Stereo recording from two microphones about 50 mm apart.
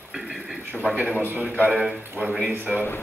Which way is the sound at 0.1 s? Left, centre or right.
Centre.